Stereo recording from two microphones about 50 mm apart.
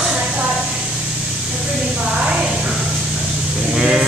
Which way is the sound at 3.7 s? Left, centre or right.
Centre.